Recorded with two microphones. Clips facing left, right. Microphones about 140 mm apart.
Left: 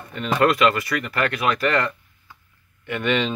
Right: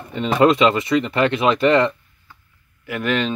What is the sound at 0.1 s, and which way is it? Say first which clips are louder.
Speech: right 4 dB; 25° right (ahead or behind).